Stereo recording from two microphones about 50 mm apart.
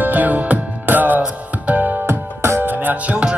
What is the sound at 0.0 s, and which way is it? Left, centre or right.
Music, right.